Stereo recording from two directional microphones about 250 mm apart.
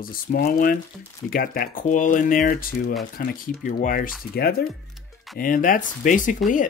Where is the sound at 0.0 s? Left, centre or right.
Left.